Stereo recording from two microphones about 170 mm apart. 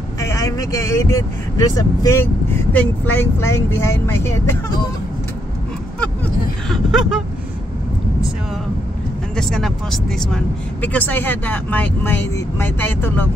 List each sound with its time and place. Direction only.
0.2 s speech: 20° left (ahead or behind)
6.7 s a sound: centre (ahead or behind)
9.4 s speech: centre (ahead or behind)